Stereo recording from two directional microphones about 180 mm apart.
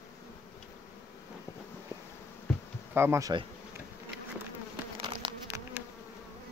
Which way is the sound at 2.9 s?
15° right (ahead or behind).